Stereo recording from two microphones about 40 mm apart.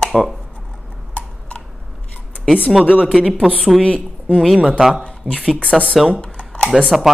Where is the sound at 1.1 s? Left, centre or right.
Left.